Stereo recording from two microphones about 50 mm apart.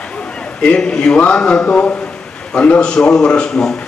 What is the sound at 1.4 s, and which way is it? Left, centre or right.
A man's voice, left.